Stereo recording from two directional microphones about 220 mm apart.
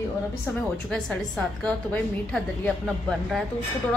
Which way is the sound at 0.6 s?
5° left (ahead or behind).